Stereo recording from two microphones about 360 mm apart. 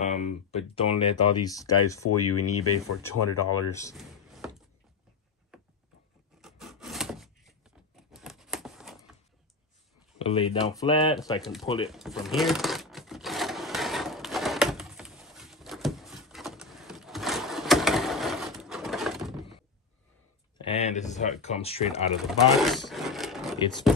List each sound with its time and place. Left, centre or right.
0.0 s speech: centre
2.0 s speech: left
3.7 s a sound: centre
6.4 s wood: centre
10.1 s speech: centre
11.9 s sewing machine: centre
20.5 s a sound: centre
22.6 s speech: centre